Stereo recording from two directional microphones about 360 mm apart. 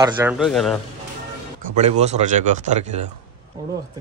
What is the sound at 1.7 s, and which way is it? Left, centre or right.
Speech, centre.